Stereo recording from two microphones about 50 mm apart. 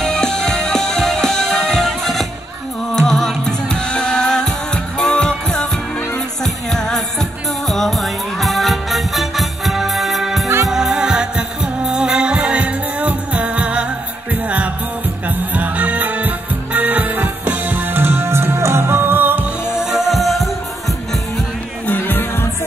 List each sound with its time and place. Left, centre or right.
0.0 s music: centre; by 19.3 s right
19.6 s music: left
19.9 s music: centre
21.8 s music: left